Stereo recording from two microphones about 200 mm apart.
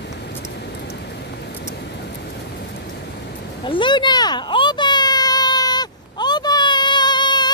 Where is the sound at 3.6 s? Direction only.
25° left (ahead or behind).